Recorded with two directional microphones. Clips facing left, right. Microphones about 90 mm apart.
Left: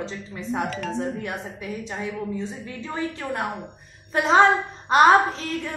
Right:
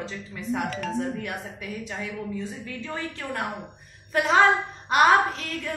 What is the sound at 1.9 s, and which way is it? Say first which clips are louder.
A woman's voice: left 4 dB; 25° left (ahead or behind).